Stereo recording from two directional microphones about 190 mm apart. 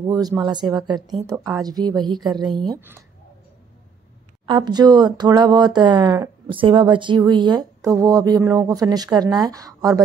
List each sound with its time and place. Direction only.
0.0 s speech: 20° right (ahead or behind)
4.5 s speech: 20° right (ahead or behind)